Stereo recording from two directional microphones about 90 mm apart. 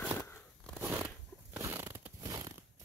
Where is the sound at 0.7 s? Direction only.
25° right (ahead or behind).